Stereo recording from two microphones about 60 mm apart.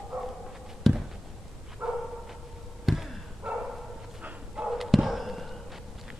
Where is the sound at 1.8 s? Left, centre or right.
Right.